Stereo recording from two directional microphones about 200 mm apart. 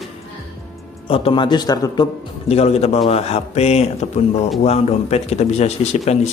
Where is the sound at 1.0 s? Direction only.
25° left (ahead or behind).